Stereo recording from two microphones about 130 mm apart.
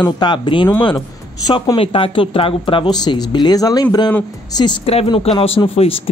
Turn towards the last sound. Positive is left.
turn(degrees=45)  # may be behind; listen again after turning